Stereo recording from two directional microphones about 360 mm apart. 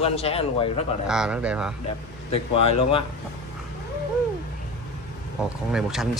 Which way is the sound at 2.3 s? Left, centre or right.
Centre.